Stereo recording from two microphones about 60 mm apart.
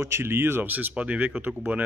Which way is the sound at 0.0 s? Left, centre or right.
Right.